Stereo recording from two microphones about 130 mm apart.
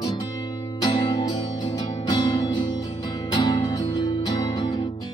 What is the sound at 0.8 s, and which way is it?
Music, 35° left (ahead or behind).